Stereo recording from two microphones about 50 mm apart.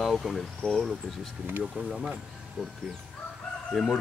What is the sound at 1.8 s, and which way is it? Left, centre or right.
Speech, right.